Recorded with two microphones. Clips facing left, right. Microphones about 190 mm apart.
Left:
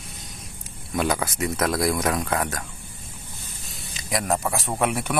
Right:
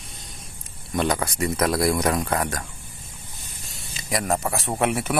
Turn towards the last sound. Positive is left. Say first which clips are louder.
# right 1 dB
turn(degrees=0)  # may be behind; listen again after turning